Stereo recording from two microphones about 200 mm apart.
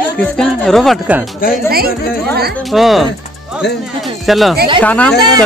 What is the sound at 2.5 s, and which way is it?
Speech, centre (ahead or behind).